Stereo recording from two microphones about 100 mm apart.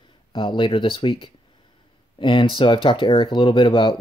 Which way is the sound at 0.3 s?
55° left (ahead or behind).